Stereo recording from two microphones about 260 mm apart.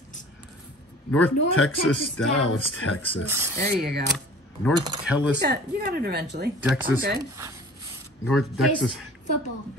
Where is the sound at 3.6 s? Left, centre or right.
Right.